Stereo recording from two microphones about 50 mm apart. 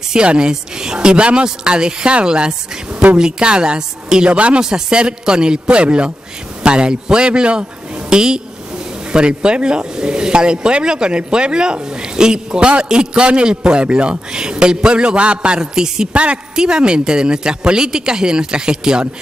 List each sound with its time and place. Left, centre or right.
0.1 s a man's voice: centre
16.1 s speech: right